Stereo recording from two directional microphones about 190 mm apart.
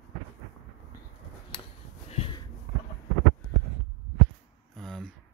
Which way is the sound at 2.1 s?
30° left (ahead or behind).